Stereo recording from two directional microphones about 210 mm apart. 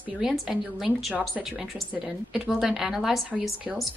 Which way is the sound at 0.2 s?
Centre (ahead or behind).